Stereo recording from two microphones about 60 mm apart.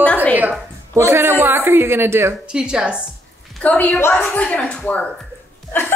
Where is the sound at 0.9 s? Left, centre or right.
Right.